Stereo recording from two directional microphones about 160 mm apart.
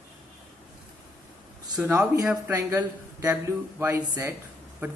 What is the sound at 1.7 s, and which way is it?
Speech, 20° right (ahead or behind).